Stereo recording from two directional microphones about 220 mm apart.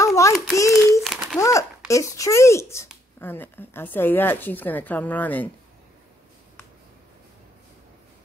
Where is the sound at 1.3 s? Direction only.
15° left (ahead or behind).